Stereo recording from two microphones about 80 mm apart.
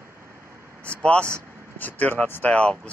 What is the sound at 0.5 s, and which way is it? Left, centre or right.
Vehicle, right.